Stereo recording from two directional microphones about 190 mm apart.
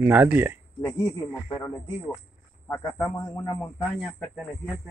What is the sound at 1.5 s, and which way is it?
A man's voice, 20° left (ahead or behind).